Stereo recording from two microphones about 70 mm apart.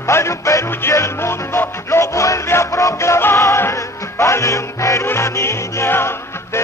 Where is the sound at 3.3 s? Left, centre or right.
Left.